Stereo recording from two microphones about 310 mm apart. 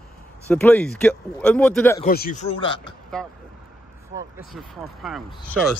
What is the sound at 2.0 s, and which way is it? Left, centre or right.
Speech, left.